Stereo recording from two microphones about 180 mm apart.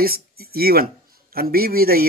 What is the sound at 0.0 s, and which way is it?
Speech, 55° right (ahead or behind).